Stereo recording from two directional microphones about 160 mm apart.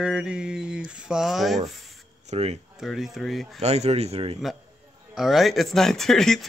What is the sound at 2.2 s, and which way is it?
Speech, 45° right (ahead or behind).